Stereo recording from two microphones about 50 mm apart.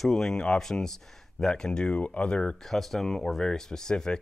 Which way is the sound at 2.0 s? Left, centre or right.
Left.